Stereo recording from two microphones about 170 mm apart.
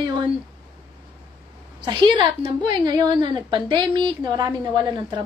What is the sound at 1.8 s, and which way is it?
A woman's voice, 25° right (ahead or behind).